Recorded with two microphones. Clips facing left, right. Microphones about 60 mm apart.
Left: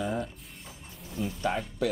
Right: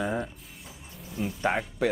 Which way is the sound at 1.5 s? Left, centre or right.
Right.